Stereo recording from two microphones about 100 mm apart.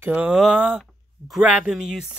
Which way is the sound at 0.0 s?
20° right (ahead or behind).